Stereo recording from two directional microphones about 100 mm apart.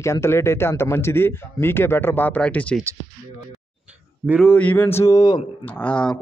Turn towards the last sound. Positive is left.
turn(degrees=10)  # may be behind; listen again after turning